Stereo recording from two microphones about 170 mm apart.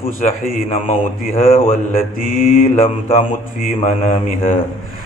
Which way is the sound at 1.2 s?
55° left (ahead or behind).